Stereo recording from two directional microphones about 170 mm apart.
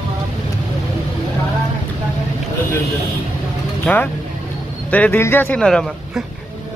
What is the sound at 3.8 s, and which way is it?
Speech, 10° left (ahead or behind).